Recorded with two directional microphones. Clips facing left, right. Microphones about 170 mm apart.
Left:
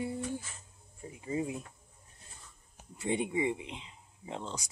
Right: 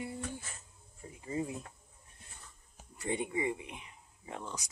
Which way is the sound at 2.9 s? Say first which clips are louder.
Left 3 dB; 20° left (ahead or behind).